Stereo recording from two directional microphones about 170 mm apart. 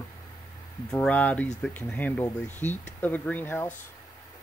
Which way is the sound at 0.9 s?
10° left (ahead or behind).